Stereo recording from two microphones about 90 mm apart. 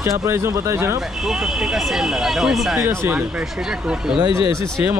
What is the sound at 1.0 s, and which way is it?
Speech, 5° right (ahead or behind).